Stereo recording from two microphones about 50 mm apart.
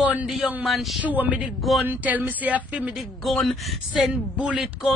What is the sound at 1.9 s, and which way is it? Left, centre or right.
A woman's voice, right.